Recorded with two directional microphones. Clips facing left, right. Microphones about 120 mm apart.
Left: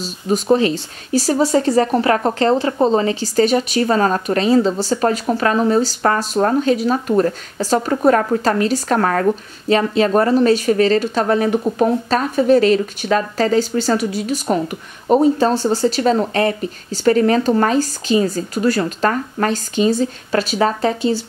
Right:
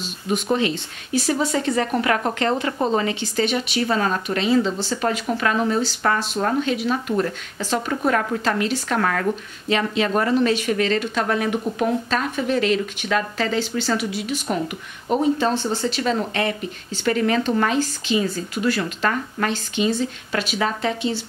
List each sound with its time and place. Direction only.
0.0 s speech: 35° left (ahead or behind)